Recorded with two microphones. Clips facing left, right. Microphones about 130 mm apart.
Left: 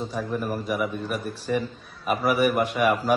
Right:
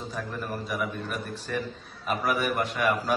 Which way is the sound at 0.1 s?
10° left (ahead or behind).